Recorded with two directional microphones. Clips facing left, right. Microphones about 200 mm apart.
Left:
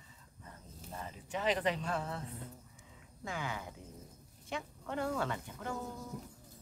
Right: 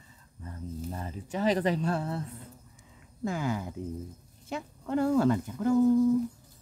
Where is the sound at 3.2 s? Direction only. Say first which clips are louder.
Right 10 dB; 40° right (ahead or behind).